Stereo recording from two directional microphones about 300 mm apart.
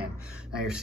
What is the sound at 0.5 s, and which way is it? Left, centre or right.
Speech, centre.